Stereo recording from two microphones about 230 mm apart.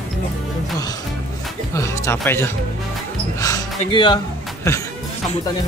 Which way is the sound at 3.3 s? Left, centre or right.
Centre.